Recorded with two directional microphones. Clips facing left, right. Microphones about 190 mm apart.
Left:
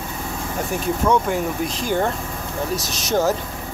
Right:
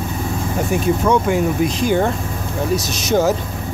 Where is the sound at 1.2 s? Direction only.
10° right (ahead or behind).